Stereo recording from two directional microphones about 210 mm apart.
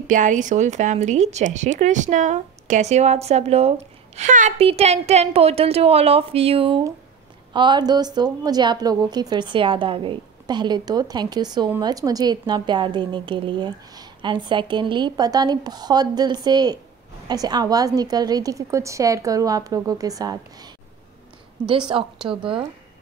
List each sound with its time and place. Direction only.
0.0 s a woman's voice: 35° right (ahead or behind); by 20.7 s 20° right (ahead or behind)
21.8 s a woman's voice: 25° right (ahead or behind)